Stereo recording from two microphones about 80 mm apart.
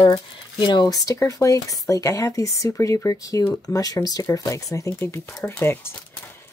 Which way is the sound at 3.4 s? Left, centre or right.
Left.